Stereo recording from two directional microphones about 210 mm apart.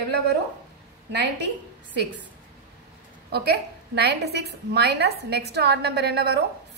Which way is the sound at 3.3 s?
50° right (ahead or behind).